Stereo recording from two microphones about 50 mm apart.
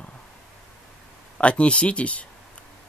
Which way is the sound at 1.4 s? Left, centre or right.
Left.